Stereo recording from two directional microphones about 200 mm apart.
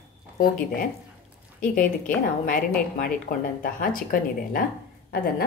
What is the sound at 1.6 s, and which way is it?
A woman's voice, 40° left (ahead or behind).